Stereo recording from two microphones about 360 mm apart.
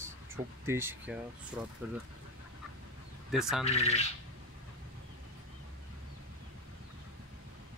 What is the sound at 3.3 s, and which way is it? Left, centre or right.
Speech, centre.